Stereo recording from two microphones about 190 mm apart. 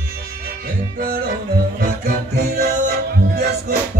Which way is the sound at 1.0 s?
55° right (ahead or behind).